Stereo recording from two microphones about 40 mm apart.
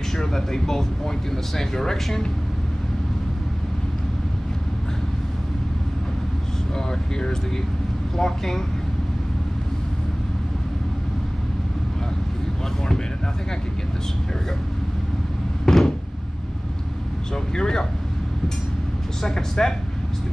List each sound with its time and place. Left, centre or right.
0.1 s speech: centre
6.7 s speech: centre
15.6 s door: centre
17.3 s speech: centre
19.2 s speech: centre